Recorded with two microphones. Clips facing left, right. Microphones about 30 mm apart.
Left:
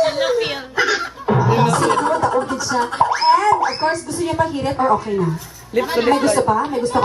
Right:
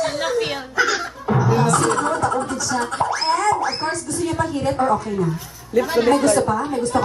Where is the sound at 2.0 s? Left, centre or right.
Centre.